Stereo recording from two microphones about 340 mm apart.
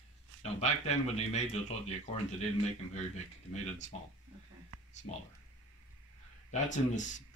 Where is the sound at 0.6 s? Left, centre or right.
Centre.